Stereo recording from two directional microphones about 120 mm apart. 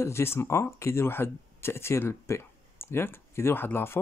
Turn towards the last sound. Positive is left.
turn(degrees=20)  # may be behind; listen again after turning